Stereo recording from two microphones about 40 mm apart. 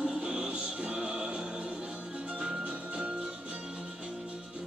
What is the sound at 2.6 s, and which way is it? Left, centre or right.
Music, right.